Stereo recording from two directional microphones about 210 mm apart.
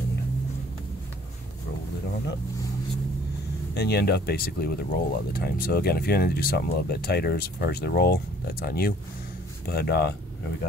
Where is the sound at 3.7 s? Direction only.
50° left (ahead or behind).